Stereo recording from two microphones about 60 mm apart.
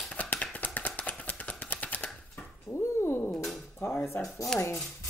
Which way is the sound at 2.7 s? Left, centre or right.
Left.